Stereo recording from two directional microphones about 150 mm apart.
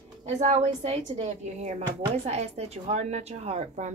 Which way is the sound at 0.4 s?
45° right (ahead or behind).